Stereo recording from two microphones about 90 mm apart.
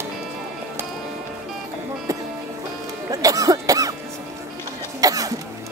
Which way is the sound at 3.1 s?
40° right (ahead or behind).